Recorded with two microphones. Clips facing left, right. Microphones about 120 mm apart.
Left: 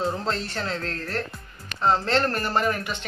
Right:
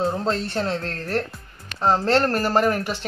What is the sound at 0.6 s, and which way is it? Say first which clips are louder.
A man's voice: right 4 dB; 40° right (ahead or behind).